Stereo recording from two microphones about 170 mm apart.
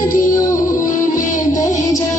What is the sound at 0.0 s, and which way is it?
Music, 50° left (ahead or behind).